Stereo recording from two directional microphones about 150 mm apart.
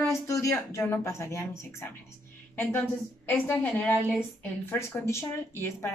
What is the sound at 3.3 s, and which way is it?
A woman's voice, 10° left (ahead or behind).